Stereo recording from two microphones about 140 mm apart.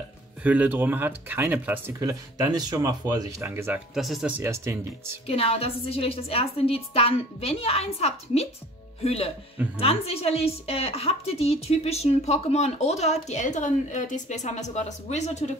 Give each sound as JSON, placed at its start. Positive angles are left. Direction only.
{"t": 0.4, "sound": "speech", "side_deg": -10}
{"t": 2.0, "sound": "speech", "side_deg": -25}
{"t": 3.9, "sound": "speech", "side_deg": 0}
{"t": 4.4, "sound": "speech", "side_deg": -20}
{"t": 5.2, "sound": "a woman's voice", "side_deg": 45}